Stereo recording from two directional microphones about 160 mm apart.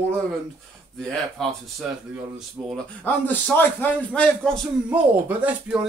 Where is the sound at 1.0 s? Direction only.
5° left (ahead or behind).